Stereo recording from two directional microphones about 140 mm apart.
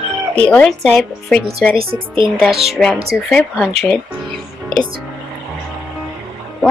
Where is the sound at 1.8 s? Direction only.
40° right (ahead or behind).